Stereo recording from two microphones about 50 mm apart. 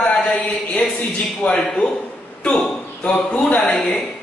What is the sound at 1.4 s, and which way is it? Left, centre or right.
Speech, left.